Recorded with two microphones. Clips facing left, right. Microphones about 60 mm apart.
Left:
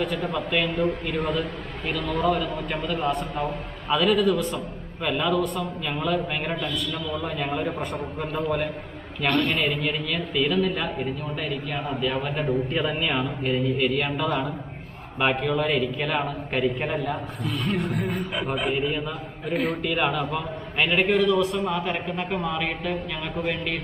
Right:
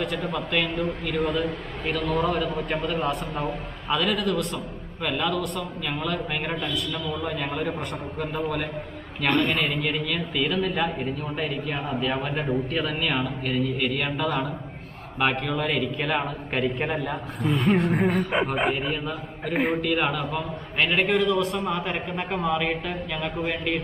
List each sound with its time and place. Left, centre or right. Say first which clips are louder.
0.0 s a man's voice: left 1 dB; centre
9.3 s a man's voice: even; centre
19.5 s a man's voice: right 1 dB; centre
19.8 s a man's voice: even; centre